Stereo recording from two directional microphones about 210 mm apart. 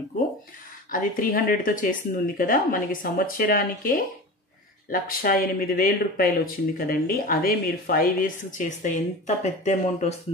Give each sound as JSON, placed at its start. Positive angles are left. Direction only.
{"t": 0.9, "sound": "speech", "side_deg": 40}